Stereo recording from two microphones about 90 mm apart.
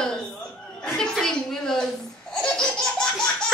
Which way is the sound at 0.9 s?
5° left (ahead or behind).